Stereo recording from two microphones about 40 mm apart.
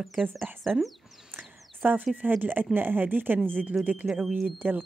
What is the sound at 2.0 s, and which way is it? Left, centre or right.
Speech, right.